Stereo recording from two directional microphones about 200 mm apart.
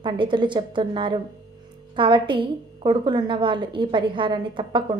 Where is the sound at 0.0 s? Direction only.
25° right (ahead or behind).